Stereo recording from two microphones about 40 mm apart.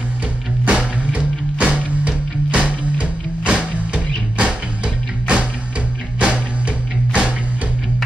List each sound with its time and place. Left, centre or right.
0.7 s music: right